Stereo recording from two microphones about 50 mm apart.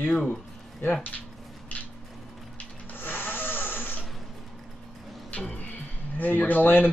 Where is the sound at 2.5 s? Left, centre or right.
Left.